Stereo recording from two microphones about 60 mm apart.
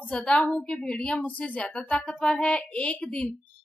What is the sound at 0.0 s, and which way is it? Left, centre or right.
A woman's voice, centre.